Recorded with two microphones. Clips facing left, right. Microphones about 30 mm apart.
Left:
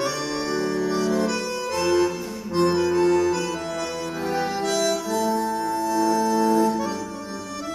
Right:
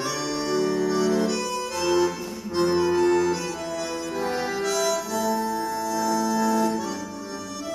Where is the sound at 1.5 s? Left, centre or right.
Left.